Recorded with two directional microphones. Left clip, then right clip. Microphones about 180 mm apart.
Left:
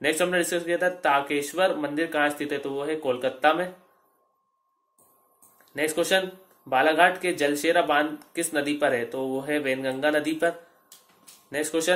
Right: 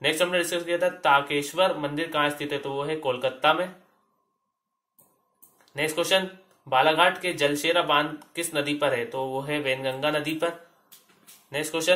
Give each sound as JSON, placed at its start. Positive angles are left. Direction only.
{"t": 0.0, "sound": "speech", "side_deg": 55}
{"t": 5.7, "sound": "speech", "side_deg": 55}
{"t": 11.5, "sound": "speech", "side_deg": 55}